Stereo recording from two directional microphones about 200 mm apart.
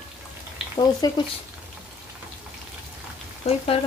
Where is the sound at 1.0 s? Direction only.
20° left (ahead or behind).